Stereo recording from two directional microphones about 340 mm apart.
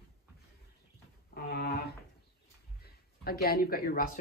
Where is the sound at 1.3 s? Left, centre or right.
Left.